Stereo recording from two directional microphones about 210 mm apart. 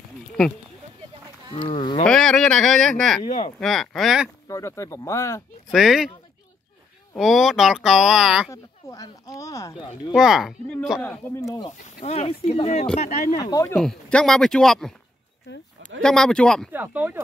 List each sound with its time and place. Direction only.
1.5 s speech: 25° left (ahead or behind)
2.0 s speech: 5° left (ahead or behind)
3.2 s speech: 30° left (ahead or behind)
3.5 s speech: centre (ahead or behind)
4.5 s speech: 15° left (ahead or behind)
5.7 s speech: centre (ahead or behind)
7.2 s speech: centre (ahead or behind)
8.5 s speech: 15° left (ahead or behind)
10.1 s speech: centre (ahead or behind); by 11.7 s 15° left (ahead or behind)
12.0 s speech: 30° left (ahead or behind)
13.4 s speech: 15° left (ahead or behind)
13.7 s speech: 5° left (ahead or behind)
16.0 s speech: 5° left (ahead or behind)
16.7 s speech: 10° right (ahead or behind)